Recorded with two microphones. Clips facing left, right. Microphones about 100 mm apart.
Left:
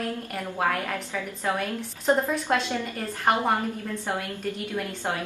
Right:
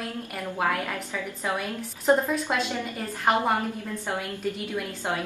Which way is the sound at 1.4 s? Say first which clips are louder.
Left 2 dB; 5° right (ahead or behind).